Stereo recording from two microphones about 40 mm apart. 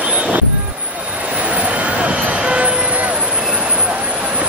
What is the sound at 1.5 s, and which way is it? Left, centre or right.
Vehicle, right.